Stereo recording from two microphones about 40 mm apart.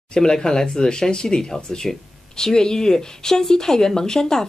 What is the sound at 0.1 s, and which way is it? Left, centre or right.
Speech, centre.